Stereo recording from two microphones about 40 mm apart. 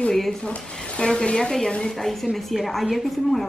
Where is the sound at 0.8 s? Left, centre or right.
Left.